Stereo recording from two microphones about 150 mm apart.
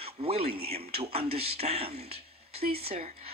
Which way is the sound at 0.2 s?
40° right (ahead or behind).